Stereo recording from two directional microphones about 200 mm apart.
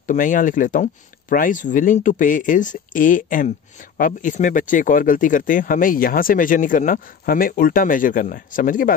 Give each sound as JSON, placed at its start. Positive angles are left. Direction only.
{"t": 0.0, "sound": "speech", "side_deg": 40}